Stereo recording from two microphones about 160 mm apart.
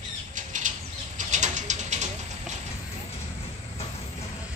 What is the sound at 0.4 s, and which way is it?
Bird, 50° right (ahead or behind).